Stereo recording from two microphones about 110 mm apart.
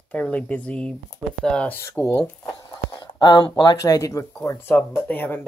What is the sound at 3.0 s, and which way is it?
Speech, 40° left (ahead or behind).